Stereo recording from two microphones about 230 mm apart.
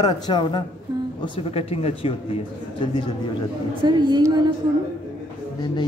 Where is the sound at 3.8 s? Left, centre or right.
Centre.